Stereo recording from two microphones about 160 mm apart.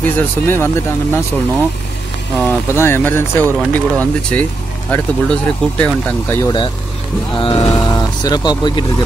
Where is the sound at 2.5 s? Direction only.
15° left (ahead or behind).